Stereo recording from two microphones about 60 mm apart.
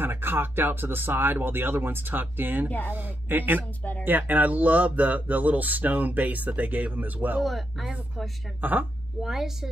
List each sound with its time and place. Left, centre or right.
0.0 s speech: right
7.4 s a woman's voice: centre
8.5 s speech: right
9.2 s a woman's voice: centre